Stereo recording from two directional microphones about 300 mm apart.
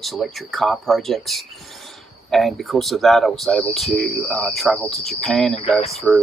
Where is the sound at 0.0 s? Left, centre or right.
Centre.